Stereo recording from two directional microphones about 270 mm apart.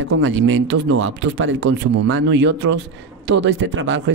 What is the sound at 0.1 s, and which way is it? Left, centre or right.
Speech, right.